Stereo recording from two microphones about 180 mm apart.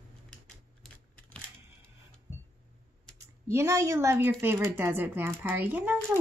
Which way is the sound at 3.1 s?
15° right (ahead or behind).